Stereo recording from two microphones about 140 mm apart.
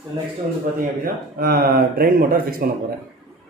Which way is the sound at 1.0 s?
90° right.